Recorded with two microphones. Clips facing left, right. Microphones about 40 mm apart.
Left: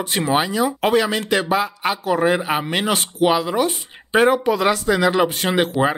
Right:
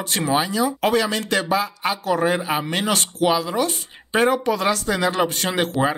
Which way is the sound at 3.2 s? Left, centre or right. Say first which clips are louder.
Left 3 dB; left.